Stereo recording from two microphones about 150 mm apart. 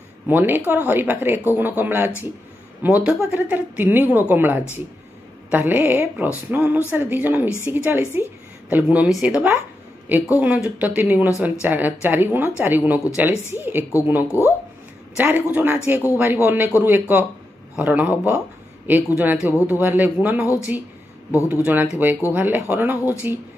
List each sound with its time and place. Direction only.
0.3 s a woman's voice: 15° right (ahead or behind)
14.2 s speech: 15° left (ahead or behind)
15.1 s a woman's voice: 10° right (ahead or behind)